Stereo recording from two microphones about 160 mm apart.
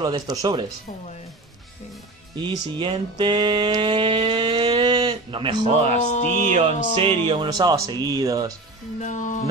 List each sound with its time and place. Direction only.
0.0 s music: 25° right (ahead or behind)
2.3 s music: 30° right (ahead or behind)
5.1 s speech: 35° right (ahead or behind)
5.7 s speech: 45° right (ahead or behind)
5.9 s music: 45° left (ahead or behind)
7.0 s music: 30° right (ahead or behind)
9.0 s music: 50° left (ahead or behind)